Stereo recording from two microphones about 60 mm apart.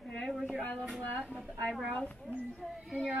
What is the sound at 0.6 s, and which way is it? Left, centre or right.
Speech, left.